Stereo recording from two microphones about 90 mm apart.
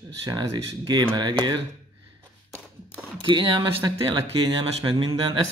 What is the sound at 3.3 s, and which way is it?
Speech, 60° right (ahead or behind).